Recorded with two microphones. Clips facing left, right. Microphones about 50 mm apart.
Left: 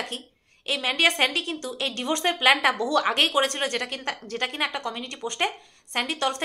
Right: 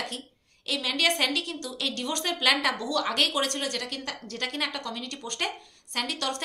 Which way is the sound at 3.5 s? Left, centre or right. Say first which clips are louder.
Left 4 dB; left.